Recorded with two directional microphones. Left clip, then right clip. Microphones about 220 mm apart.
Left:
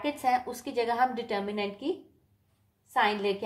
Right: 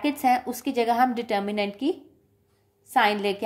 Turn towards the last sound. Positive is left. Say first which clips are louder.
# right 5 dB
turn(degrees=-50)  # may be behind; listen again after turning